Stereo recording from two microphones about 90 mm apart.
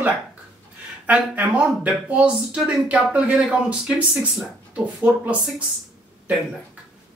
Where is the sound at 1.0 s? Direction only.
15° right (ahead or behind).